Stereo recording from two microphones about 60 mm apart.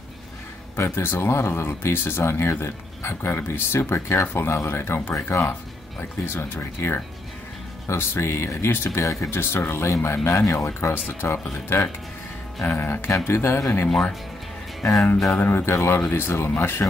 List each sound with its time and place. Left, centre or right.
0.9 s speech: left
5.9 s speech: left
9.0 s speech: left
9.3 s speech: left
12.6 s speech: left
14.8 s speech: left
15.3 s speech: left